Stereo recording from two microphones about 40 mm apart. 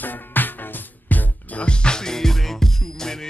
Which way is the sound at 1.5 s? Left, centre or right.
Left.